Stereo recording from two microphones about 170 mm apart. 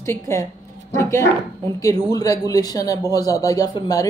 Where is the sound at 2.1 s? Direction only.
20° left (ahead or behind).